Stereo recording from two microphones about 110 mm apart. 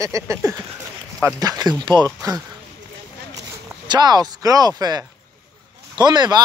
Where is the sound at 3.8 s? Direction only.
40° right (ahead or behind).